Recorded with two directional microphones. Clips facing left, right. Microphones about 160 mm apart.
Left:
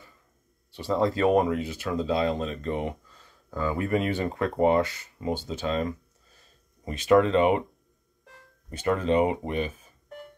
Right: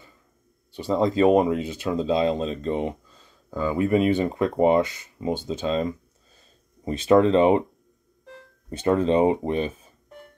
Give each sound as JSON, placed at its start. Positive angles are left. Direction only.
{"t": 0.7, "sound": "speech", "side_deg": -20}
{"t": 8.6, "sound": "speech", "side_deg": -25}